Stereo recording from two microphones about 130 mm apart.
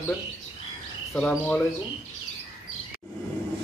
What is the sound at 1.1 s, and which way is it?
Speech, 5° left (ahead or behind).